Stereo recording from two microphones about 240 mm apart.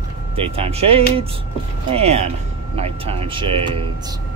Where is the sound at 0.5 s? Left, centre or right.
Right.